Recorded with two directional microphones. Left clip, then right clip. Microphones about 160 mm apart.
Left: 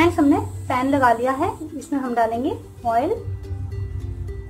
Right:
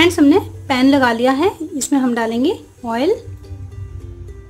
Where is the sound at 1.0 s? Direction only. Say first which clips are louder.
Right 3 dB; 90° right.